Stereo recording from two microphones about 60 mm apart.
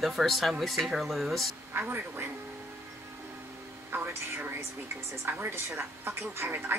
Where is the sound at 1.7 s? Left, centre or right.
Right.